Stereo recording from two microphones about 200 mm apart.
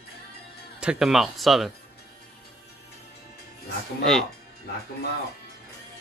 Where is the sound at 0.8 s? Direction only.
5° right (ahead or behind).